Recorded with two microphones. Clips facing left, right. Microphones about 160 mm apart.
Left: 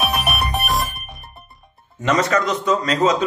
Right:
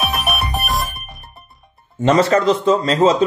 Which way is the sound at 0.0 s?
Centre (ahead or behind).